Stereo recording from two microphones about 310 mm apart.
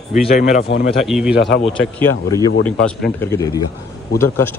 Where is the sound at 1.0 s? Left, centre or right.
Centre.